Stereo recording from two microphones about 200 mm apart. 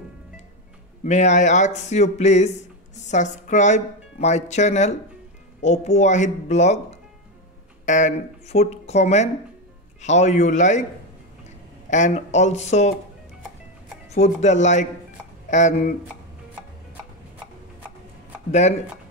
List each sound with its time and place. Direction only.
1.0 s speech: 35° left (ahead or behind)
11.9 s speech: 35° left (ahead or behind)
14.1 s speech: 35° left (ahead or behind)
18.5 s speech: 35° left (ahead or behind)